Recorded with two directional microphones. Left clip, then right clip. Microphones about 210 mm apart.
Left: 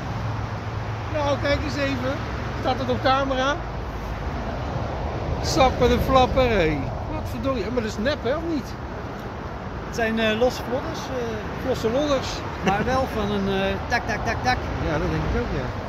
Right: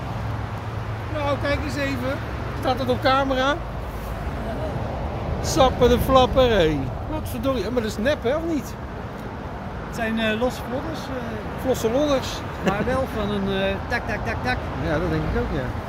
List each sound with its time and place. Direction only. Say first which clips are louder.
1.2 s speech: left 1 dB; 15° right (ahead or behind)
2.6 s speech: right 1 dB; 40° right (ahead or behind)
5.4 s speech: right 1 dB; 15° right (ahead or behind)
9.9 s speech: left 2 dB; 15° left (ahead or behind)
11.7 s speech: right 2 dB; 25° right (ahead or behind)
12.7 s speech: left 2 dB; 15° left (ahead or behind)